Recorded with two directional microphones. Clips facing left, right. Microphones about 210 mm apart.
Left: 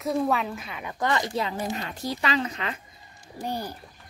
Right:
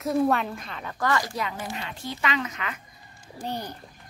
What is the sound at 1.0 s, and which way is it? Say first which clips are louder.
Speech: left 1 dB; 20° left (ahead or behind).